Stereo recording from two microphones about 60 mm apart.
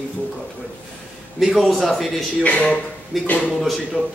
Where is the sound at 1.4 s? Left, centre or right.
Centre.